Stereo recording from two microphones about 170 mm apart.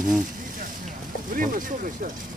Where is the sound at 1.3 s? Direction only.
55° right (ahead or behind).